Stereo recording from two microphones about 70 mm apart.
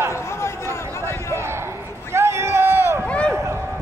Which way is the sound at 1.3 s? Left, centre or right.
Right.